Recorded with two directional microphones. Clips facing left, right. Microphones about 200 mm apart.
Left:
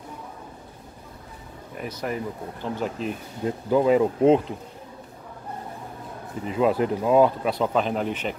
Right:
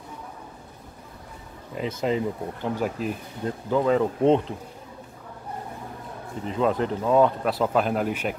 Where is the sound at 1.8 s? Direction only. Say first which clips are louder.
Right 5 dB; 25° right (ahead or behind); by 3.2 s 5° right (ahead or behind).